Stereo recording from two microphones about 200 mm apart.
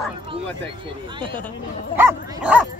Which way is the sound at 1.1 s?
25° right (ahead or behind).